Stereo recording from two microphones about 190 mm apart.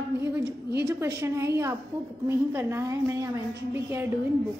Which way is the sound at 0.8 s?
15° right (ahead or behind).